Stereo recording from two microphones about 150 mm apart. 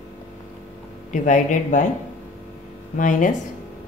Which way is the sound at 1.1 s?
55° left (ahead or behind).